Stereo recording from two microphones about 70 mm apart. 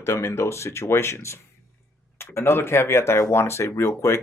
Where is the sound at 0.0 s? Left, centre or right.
Left.